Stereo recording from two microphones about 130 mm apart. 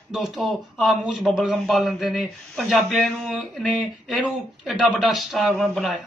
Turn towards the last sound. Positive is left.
turn(degrees=0)  # may be behind; listen again after turning